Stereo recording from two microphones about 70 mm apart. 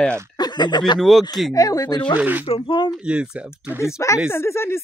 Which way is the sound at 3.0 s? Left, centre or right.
Centre.